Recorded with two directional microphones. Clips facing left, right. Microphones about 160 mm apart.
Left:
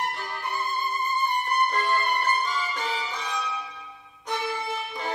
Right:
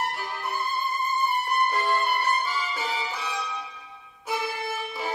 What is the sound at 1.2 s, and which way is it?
Music, 5° right (ahead or behind).